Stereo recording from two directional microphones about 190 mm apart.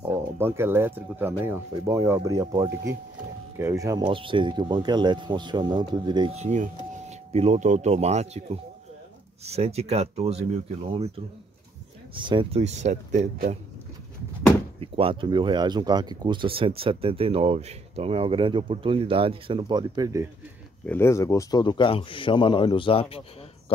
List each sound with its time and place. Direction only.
0.0 s speech: 15° right (ahead or behind)
6.3 s speech: 35° right (ahead or behind)
14.8 s speech: 30° right (ahead or behind)
20.8 s a man's voice: 10° left (ahead or behind); by 23.2 s 30° left (ahead or behind)